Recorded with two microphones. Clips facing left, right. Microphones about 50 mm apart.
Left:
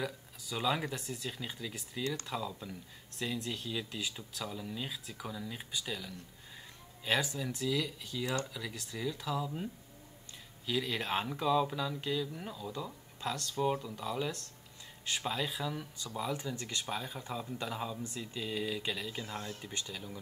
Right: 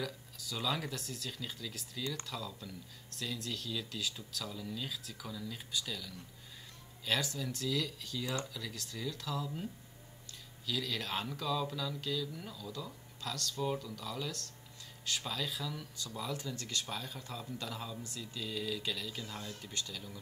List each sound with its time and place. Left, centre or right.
0.0 s speech: left
10.7 s speech: left